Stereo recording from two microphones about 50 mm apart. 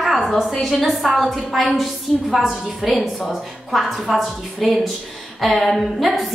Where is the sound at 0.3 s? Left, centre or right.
Centre.